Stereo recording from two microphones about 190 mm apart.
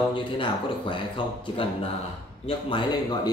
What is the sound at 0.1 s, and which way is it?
A man's voice, 25° left (ahead or behind).